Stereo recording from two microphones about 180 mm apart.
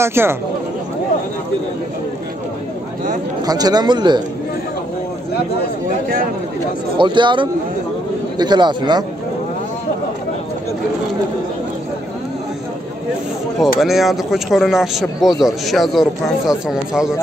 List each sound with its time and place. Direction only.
0.0 s speech: 15° right (ahead or behind)
3.4 s speech: 20° right (ahead or behind)
7.0 s speech: 25° right (ahead or behind)
13.6 s speech: centre (ahead or behind)